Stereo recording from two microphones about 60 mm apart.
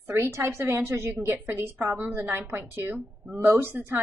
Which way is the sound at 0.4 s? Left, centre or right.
Right.